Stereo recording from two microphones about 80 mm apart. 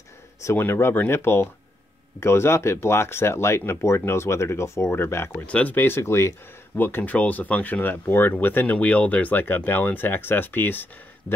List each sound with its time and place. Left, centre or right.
0.6 s speech: left
5.5 s speech: centre